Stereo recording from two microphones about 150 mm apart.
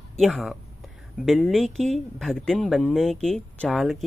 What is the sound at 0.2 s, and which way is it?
Speech, centre (ahead or behind).